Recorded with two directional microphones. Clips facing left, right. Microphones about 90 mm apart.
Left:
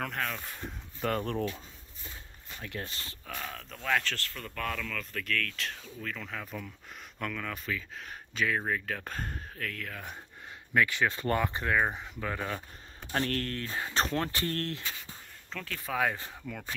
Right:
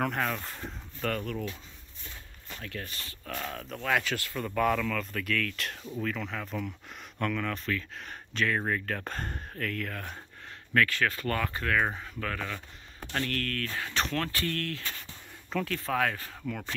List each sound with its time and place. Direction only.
0.0 s speech: 5° right (ahead or behind)
1.2 s speech: 40° left (ahead or behind)
2.6 s speech: 20° left (ahead or behind)
3.3 s speech: centre (ahead or behind)
10.7 s speech: 15° left (ahead or behind)
13.1 s speech: 30° left (ahead or behind)
14.8 s speech: 5° left (ahead or behind)
15.8 s speech: 10° left (ahead or behind)